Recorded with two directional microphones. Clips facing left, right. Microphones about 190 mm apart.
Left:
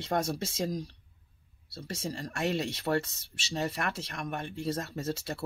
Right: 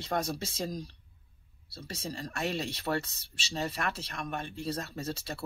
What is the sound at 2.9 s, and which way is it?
Speech, 10° left (ahead or behind).